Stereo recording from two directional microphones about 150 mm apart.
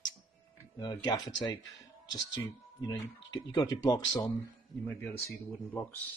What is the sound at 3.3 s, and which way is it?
Speech, 25° left (ahead or behind).